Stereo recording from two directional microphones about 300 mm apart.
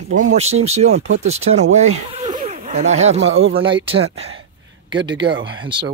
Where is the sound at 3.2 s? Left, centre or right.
Right.